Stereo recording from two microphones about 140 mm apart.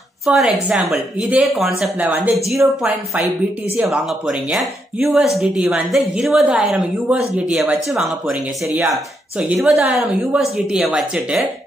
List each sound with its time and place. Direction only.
0.3 s a woman's voice: 5° right (ahead or behind)
2.0 s a woman's voice: 10° right (ahead or behind)
2.3 s a woman's voice: centre (ahead or behind)
3.9 s a woman's voice: 5° right (ahead or behind)
9.5 s a woman's voice: 15° right (ahead or behind)
9.8 s a woman's voice: centre (ahead or behind)